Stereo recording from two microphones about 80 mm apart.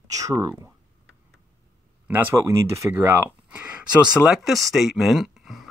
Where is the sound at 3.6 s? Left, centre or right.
Centre.